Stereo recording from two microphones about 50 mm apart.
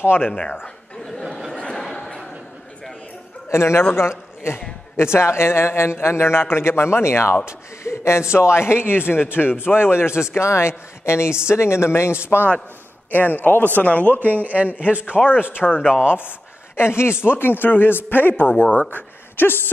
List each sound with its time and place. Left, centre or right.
0.0 s speech: left
0.3 s a man's voice: centre
1.6 s chuckle: centre
3.4 s a man's voice: left
9.8 s a man's voice: left
10.4 s a man's voice: left
13.1 s a man's voice: left
14.2 s a man's voice: right
15.2 s a man's voice: left